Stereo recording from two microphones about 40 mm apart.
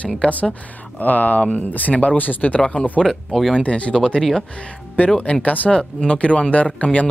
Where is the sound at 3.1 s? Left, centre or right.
Centre.